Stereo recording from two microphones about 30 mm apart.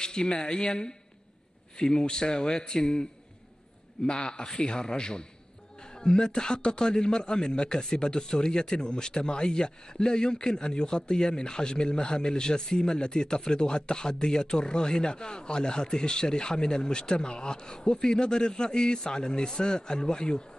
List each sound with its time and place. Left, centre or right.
0.0 s speech: left